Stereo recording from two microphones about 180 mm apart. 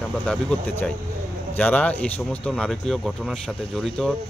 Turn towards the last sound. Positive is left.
turn(degrees=5)  # may be behind; listen again after turning